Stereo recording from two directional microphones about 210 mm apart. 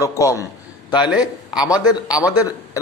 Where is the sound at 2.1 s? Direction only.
15° left (ahead or behind).